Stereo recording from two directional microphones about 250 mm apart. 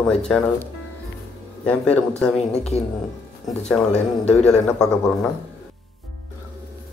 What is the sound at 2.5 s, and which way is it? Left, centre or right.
Speech, left.